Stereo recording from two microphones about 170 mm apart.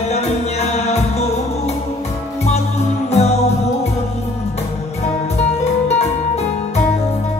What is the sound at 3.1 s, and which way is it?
Music, 40° left (ahead or behind).